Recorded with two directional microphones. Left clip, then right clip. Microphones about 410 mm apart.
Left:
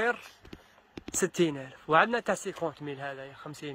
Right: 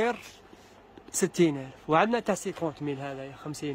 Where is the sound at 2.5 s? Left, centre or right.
Centre.